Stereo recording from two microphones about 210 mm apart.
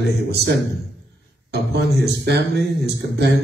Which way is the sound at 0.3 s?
55° right (ahead or behind).